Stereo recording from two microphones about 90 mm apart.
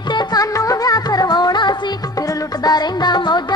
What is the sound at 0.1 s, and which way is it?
Music, 45° left (ahead or behind).